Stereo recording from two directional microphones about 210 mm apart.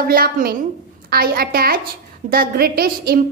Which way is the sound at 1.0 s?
45° right (ahead or behind).